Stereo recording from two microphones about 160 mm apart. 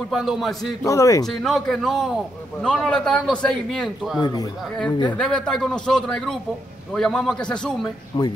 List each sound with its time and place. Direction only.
0.1 s a man's voice: centre (ahead or behind)
0.8 s speech: 20° left (ahead or behind)
1.2 s a man's voice: centre (ahead or behind)
4.2 s speech: 25° left (ahead or behind)
5.1 s a man's voice: 5° left (ahead or behind)
8.1 s speech: 30° left (ahead or behind)